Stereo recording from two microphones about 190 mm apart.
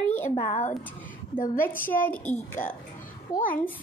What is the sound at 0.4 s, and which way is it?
Speech, 40° left (ahead or behind).